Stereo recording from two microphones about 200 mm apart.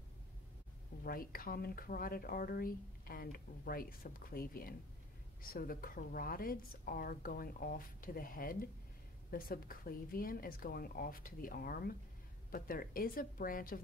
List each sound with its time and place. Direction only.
1.0 s speech: 45° left (ahead or behind)